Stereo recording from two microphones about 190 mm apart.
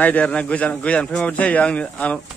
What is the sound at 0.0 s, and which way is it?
Speech, 10° left (ahead or behind).